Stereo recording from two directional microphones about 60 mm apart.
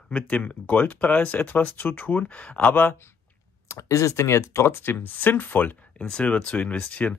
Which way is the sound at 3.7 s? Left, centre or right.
Left.